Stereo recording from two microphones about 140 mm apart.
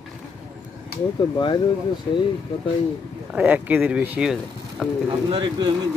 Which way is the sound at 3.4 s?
10° right (ahead or behind).